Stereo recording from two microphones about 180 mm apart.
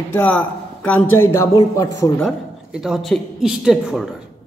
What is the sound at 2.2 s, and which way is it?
Speech, centre (ahead or behind).